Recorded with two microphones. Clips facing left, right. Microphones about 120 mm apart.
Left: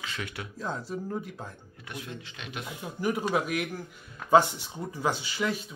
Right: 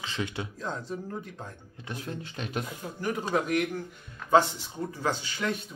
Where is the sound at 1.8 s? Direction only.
35° right (ahead or behind).